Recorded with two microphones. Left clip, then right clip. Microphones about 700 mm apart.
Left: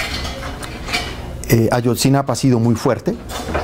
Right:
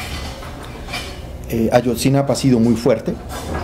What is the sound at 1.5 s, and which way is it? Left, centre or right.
Speech, left.